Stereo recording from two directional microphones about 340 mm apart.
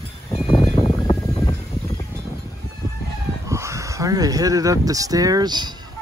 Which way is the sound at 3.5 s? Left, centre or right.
Centre.